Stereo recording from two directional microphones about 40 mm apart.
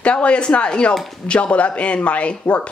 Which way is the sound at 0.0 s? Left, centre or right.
Left.